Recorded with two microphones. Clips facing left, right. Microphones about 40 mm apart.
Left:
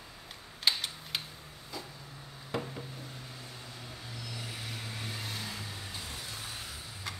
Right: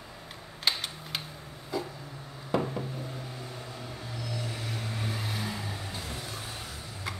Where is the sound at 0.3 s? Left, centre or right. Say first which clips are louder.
Right 1 dB; centre.